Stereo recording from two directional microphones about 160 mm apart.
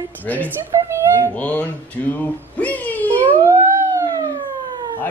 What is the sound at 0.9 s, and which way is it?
Speech, 15° right (ahead or behind).